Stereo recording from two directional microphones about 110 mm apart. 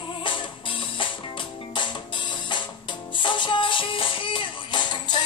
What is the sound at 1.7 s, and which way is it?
Music, 45° left (ahead or behind).